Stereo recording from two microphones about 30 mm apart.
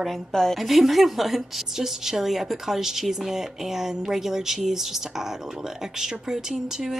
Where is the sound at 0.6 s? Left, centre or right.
Centre.